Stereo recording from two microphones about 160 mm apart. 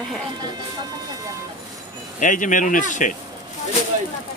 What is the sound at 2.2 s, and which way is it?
Speech, 55° left (ahead or behind).